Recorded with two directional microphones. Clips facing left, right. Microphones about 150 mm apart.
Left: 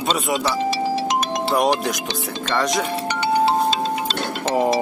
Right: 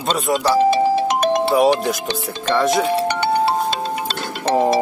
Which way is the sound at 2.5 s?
5° right (ahead or behind).